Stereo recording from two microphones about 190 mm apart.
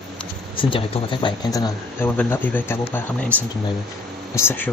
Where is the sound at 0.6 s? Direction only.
25° left (ahead or behind); by 3.3 s 10° left (ahead or behind).